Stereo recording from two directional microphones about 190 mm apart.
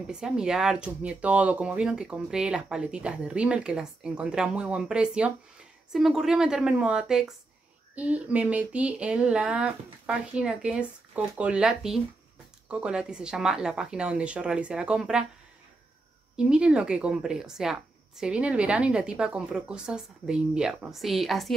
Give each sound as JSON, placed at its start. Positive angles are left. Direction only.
{"t": 0.1, "sound": "a woman's voice", "side_deg": -5}
{"t": 16.3, "sound": "a woman's voice", "side_deg": -5}